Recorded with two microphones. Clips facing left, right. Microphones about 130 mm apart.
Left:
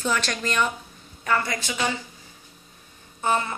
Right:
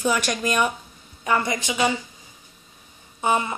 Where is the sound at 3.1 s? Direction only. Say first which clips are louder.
Right 2 dB; 15° right (ahead or behind).